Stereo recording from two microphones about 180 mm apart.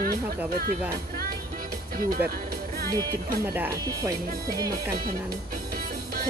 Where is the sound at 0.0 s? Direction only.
55° right (ahead or behind).